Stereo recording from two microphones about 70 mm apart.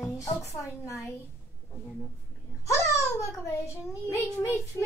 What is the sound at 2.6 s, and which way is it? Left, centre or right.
A child's voice, left.